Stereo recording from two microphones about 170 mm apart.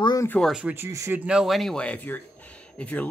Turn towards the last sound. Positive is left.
turn(degrees=10)  # may be behind; listen again after turning